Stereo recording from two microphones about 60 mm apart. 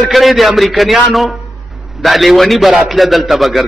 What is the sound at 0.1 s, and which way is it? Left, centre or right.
A man's voice, centre.